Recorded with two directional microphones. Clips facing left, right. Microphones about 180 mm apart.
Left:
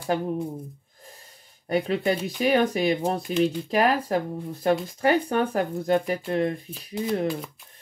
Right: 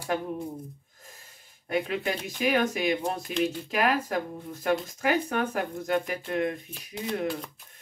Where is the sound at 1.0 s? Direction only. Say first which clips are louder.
Left 5 dB; 35° left (ahead or behind).